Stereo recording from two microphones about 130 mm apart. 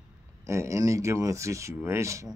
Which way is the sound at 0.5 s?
20° right (ahead or behind).